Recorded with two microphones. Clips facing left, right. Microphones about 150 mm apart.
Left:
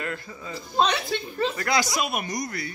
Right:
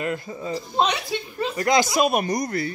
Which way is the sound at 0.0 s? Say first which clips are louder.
Right 6 dB; 25° right (ahead or behind).